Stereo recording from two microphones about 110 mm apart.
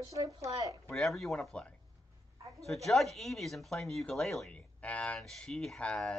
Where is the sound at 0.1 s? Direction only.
30° right (ahead or behind).